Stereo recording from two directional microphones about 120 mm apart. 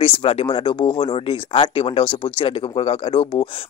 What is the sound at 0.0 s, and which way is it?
A man's voice, 50° left (ahead or behind).